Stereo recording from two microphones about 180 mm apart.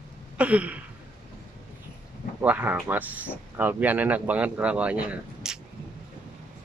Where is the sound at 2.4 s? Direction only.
10° right (ahead or behind).